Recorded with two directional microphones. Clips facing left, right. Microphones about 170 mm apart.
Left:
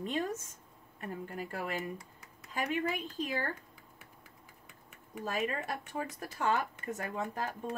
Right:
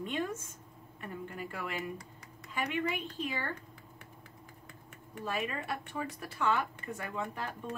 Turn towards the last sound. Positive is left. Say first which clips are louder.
# left 2 dB
turn(degrees=45)  # may be behind; listen again after turning